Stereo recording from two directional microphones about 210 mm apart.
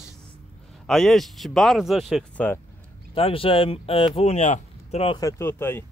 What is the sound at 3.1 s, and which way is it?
Speech, 25° left (ahead or behind).